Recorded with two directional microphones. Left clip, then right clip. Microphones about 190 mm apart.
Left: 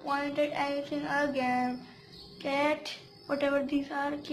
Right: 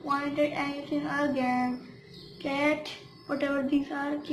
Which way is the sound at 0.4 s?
35° left (ahead or behind).